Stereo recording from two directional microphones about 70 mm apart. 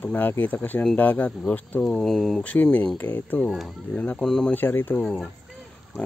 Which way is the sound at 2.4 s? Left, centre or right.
Centre.